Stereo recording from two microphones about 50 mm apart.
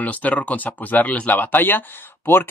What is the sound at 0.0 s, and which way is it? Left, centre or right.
Speech, left.